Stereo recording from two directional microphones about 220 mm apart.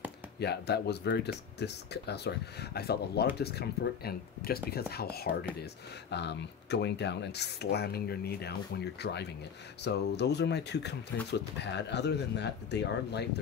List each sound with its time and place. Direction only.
0.4 s speech: 50° left (ahead or behind)